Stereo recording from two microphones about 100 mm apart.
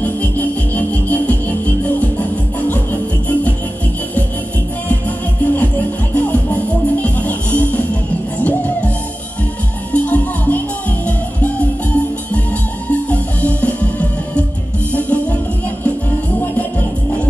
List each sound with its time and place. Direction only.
0.0 s music: 15° left (ahead or behind)
6.1 s music: 15° left (ahead or behind)
9.9 s music: 15° left (ahead or behind)
13.1 s music: 15° left (ahead or behind)